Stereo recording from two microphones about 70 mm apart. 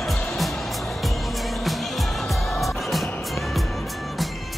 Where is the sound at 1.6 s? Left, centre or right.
Centre.